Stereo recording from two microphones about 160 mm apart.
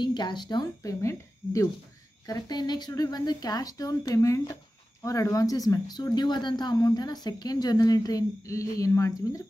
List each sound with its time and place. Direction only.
0.0 s speech: 30° left (ahead or behind)